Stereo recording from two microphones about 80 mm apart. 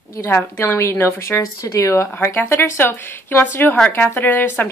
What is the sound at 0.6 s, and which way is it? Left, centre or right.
A woman's voice, left.